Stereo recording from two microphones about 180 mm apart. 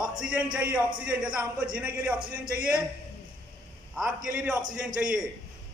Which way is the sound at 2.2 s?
55° right (ahead or behind).